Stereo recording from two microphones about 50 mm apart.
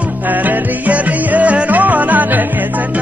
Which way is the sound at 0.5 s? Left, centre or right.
Right.